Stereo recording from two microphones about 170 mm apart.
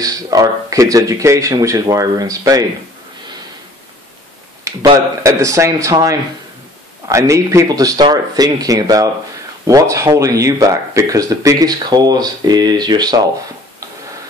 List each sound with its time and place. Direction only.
0.0 s speech: 20° right (ahead or behind)
4.7 s a sound: 20° right (ahead or behind)
5.2 s speech: 20° right (ahead or behind)